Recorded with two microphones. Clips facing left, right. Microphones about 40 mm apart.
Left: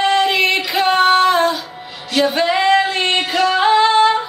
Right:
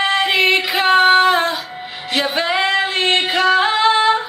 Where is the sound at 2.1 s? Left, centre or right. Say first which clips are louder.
Left 3 dB; right.